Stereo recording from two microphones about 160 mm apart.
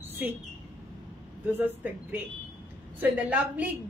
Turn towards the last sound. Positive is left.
turn(degrees=-10)  # may be behind; listen again after turning